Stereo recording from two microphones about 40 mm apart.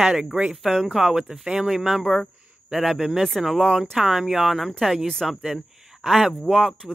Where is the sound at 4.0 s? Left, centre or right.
Centre.